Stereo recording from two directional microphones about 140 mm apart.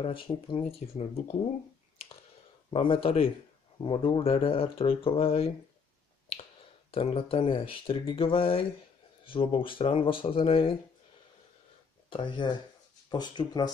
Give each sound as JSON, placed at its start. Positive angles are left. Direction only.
{"t": 0.0, "sound": "speech", "side_deg": 35}
{"t": 2.7, "sound": "speech", "side_deg": 40}
{"t": 6.9, "sound": "speech", "side_deg": 45}
{"t": 12.1, "sound": "speech", "side_deg": 35}